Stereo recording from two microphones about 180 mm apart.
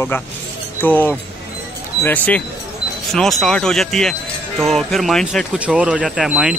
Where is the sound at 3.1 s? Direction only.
Centre (ahead or behind).